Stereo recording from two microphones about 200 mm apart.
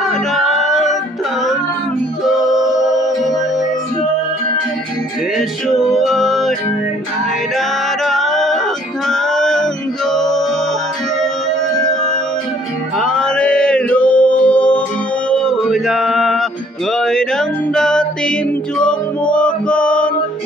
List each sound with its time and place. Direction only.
0.0 s music: centre (ahead or behind)
2.2 s music: centre (ahead or behind)
5.7 s music: centre (ahead or behind)
7.5 s music: centre (ahead or behind)
11.8 s music: 5° left (ahead or behind)